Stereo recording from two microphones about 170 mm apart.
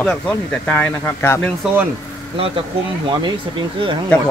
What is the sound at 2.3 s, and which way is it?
Speech, 30° right (ahead or behind).